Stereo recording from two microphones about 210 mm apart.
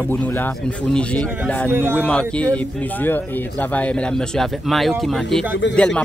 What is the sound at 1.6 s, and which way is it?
Speech, 10° right (ahead or behind).